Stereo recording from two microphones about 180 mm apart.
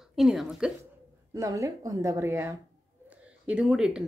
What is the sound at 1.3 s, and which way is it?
Speech, 20° right (ahead or behind).